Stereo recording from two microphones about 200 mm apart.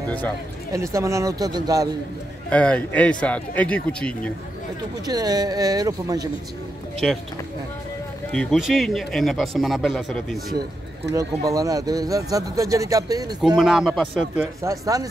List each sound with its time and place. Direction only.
0.7 s speech: 15° right (ahead or behind)
2.5 s speech: 5° left (ahead or behind)
5.0 s speech: 20° right (ahead or behind)
7.0 s speech: centre (ahead or behind)
8.3 s speech: 5° left (ahead or behind)
11.1 s speech: 15° right (ahead or behind)
13.6 s speech: centre (ahead or behind)
14.6 s speech: 15° right (ahead or behind)